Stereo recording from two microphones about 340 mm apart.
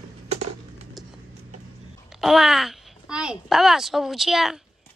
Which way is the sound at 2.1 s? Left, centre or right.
Centre.